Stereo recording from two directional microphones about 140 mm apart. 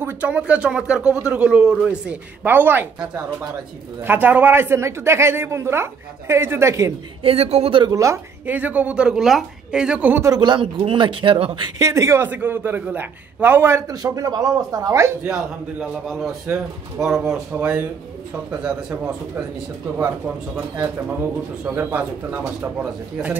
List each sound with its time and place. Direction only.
0.0 s speech: 10° right (ahead or behind)
7.2 s speech: 50° right (ahead or behind)
7.8 s a man's voice: 25° right (ahead or behind)
8.5 s speech: 10° right (ahead or behind)
10.3 s speech: 35° right (ahead or behind)
11.9 s a man's voice: 20° right (ahead or behind)
15.2 s a man's voice: 5° right (ahead or behind)
20.5 s speech: 20° right (ahead or behind)